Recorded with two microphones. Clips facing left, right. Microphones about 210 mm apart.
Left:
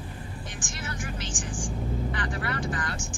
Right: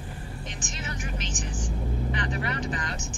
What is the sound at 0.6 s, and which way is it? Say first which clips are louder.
Vehicle: left 1 dB; 20° right (ahead or behind).